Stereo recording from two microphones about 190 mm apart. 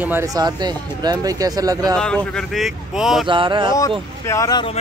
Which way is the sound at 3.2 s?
25° right (ahead or behind).